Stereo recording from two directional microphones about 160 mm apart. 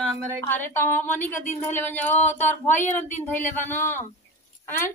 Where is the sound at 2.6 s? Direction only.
50° left (ahead or behind).